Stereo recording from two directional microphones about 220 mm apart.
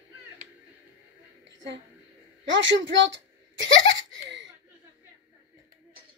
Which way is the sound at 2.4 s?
55° right (ahead or behind).